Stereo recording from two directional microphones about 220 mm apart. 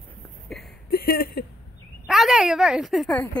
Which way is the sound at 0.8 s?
45° left (ahead or behind).